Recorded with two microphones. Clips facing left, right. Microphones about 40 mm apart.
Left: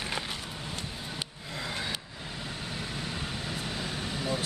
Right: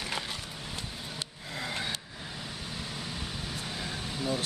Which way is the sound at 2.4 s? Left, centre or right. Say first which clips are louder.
Left 3 dB; left.